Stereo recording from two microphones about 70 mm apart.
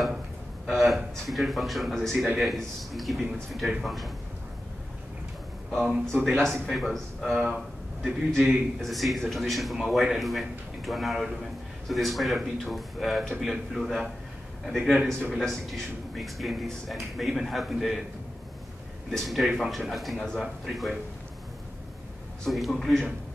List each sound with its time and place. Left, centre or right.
0.7 s a man's voice: centre
5.9 s speech: centre
6.4 s a man's voice: centre
7.3 s speech: centre
8.0 s a man's voice: centre
19.1 s a man's voice: centre
22.4 s a man's voice: centre